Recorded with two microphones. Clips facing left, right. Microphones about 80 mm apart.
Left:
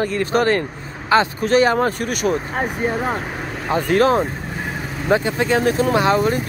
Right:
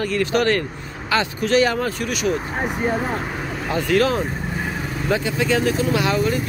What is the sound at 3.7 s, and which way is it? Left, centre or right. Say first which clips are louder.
Speech: left 3 dB; left.